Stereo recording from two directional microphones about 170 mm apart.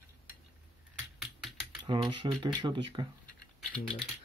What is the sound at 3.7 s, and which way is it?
Speech, 5° left (ahead or behind).